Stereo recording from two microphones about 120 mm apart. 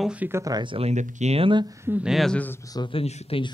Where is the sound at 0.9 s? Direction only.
75° right (ahead or behind).